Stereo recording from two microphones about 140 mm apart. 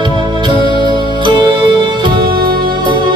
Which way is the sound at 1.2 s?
35° right (ahead or behind).